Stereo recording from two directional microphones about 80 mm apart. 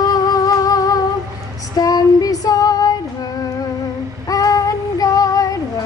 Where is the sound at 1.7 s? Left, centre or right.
Left.